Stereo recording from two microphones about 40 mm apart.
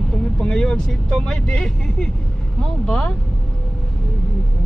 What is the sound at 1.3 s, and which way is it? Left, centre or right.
Speech, centre.